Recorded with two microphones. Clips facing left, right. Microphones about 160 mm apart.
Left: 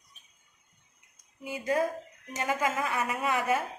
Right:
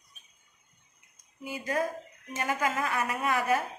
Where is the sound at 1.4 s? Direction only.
25° left (ahead or behind).